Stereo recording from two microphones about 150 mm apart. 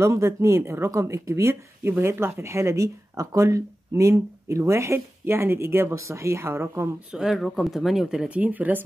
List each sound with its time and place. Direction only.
0.0 s speech: 20° right (ahead or behind)
7.1 s speech: 5° right (ahead or behind)